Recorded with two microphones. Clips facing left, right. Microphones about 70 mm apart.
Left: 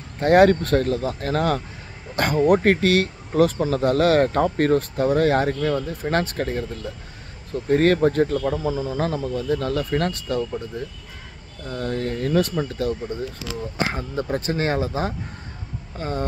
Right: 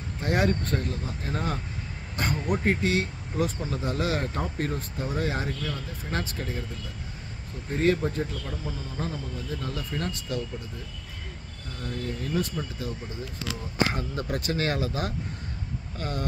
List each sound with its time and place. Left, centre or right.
0.2 s speech: left
7.7 s speech: left
11.7 s speech: left
13.8 s speech: left